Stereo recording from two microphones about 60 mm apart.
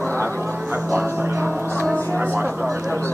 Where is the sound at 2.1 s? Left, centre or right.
Right.